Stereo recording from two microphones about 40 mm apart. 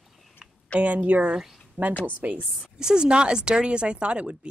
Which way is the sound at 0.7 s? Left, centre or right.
Right.